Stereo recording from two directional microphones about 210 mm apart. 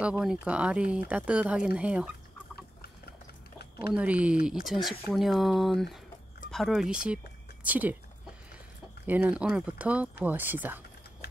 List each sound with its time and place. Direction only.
0.2 s speech: 5° right (ahead or behind)
3.9 s speech: 5° right (ahead or behind)
9.0 s speech: 10° right (ahead or behind)